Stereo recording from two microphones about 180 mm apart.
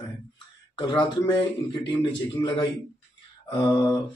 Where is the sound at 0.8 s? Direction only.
25° left (ahead or behind).